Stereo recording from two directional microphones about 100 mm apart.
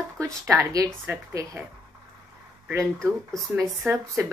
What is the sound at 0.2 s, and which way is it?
Speech, 25° right (ahead or behind).